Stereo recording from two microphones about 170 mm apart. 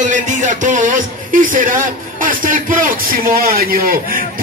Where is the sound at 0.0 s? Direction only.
45° right (ahead or behind).